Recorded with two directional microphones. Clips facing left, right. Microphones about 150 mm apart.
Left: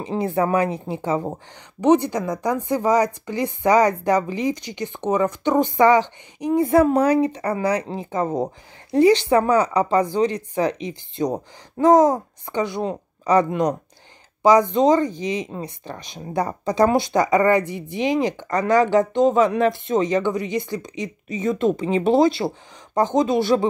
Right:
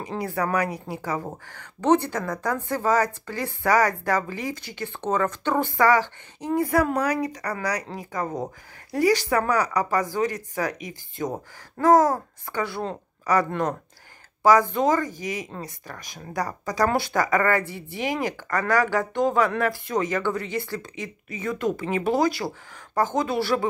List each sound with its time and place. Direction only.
0.0 s speech: 25° left (ahead or behind)